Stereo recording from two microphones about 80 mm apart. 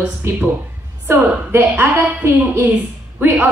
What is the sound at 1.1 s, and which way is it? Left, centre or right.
A woman's voice, right.